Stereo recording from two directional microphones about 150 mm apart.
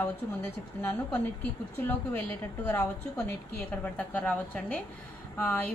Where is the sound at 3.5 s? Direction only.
10° left (ahead or behind).